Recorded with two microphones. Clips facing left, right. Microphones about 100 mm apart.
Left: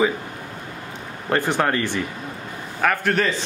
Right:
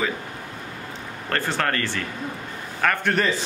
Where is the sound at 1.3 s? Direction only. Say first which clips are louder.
Left 4 dB; 15° left (ahead or behind).